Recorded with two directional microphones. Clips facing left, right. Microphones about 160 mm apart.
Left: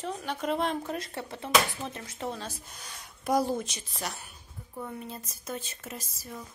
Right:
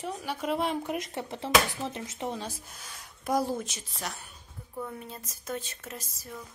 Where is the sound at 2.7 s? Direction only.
Centre (ahead or behind).